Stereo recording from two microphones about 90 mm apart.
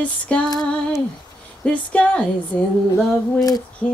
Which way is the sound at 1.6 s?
15° left (ahead or behind).